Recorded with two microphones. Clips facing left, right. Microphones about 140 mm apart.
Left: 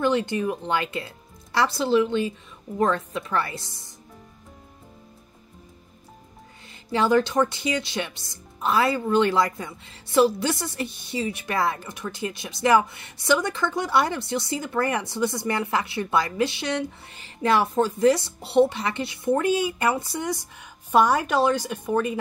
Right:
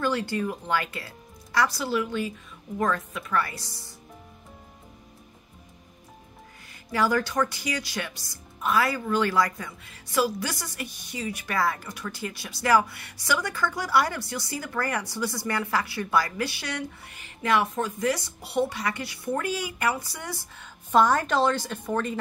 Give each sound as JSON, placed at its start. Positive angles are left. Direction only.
{"t": 0.0, "sound": "speech", "side_deg": 20}
{"t": 6.7, "sound": "speech", "side_deg": 25}